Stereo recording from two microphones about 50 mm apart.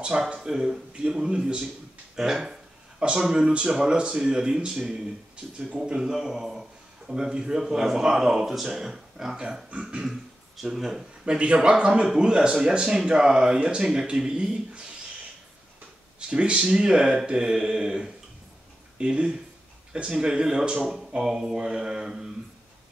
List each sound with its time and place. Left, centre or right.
0.3 s a man's voice: centre
2.1 s a sound: centre
3.2 s a man's voice: centre
5.9 s a man's voice: centre
9.7 s speech: right
10.6 s a man's voice: centre
11.2 s a man's voice: right
16.2 s a man's voice: centre
20.8 s a man's voice: centre